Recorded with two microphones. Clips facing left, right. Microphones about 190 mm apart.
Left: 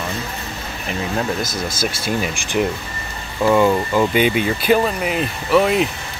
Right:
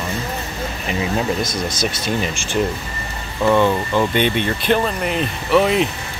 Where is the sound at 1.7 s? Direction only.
5° left (ahead or behind).